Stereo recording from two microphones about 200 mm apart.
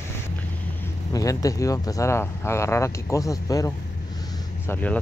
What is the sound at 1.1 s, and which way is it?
Speech, 15° left (ahead or behind).